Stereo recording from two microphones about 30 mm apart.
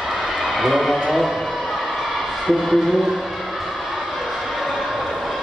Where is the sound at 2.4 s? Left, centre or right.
Centre.